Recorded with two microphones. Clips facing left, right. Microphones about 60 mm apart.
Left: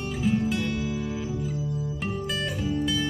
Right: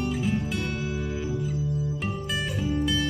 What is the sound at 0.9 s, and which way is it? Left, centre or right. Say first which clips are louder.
Music: left 1 dB; right.